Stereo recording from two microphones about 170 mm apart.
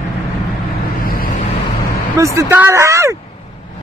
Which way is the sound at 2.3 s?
15° right (ahead or behind).